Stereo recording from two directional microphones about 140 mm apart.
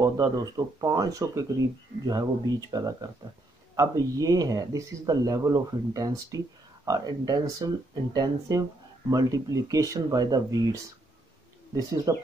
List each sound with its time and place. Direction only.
0.0 s speech: 25° right (ahead or behind)
12.1 s speech: 25° right (ahead or behind)